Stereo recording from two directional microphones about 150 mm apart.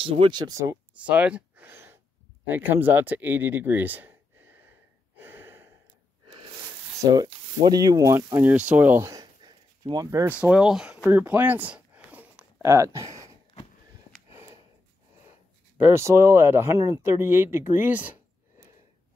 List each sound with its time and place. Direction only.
0.0 s speech: 35° right (ahead or behind)
0.9 s a sound: 10° right (ahead or behind)
7.0 s sanding: 25° right (ahead or behind)
7.2 s speech: 25° right (ahead or behind)
10.2 s speech: 10° right (ahead or behind)
11.1 s a sound: 10° right (ahead or behind)
12.6 s speech: 20° right (ahead or behind)
14.3 s a sound: 20° right (ahead or behind)
15.8 s speech: 15° right (ahead or behind)